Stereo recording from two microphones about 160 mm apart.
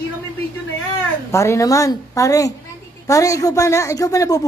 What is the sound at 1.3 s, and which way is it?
A woman's voice, 20° left (ahead or behind).